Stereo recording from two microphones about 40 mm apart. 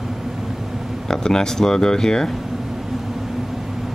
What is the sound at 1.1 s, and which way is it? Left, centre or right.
Speech, centre.